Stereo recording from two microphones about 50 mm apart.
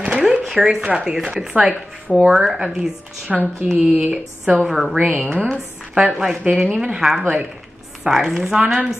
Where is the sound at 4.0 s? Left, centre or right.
Right.